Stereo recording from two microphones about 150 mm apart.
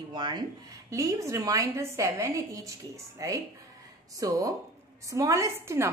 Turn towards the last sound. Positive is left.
turn(degrees=-20)  # may be behind; listen again after turning